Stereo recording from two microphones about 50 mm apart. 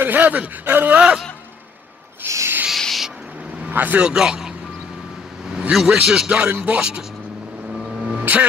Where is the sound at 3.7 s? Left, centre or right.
Right.